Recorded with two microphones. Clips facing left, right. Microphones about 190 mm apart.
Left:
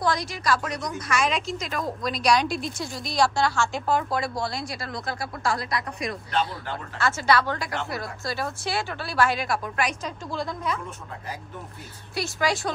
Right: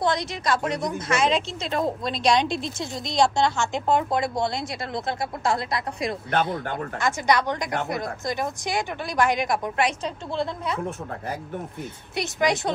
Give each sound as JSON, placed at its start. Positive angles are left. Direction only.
{"t": 0.0, "sound": "a woman's voice", "side_deg": -25}
{"t": 12.2, "sound": "speech", "side_deg": -20}